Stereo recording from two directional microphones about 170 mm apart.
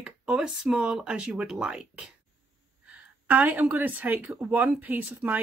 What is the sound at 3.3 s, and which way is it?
Speech, 10° right (ahead or behind).